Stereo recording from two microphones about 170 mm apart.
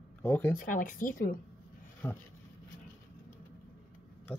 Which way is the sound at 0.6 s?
50° left (ahead or behind).